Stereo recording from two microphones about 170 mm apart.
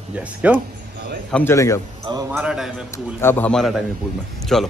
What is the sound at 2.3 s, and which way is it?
Speech, 5° right (ahead or behind).